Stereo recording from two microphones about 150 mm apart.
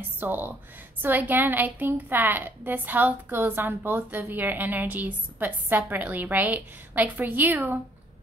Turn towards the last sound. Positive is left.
turn(degrees=-10)  # may be behind; listen again after turning